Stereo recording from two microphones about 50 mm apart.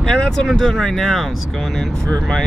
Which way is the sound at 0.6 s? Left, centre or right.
Centre.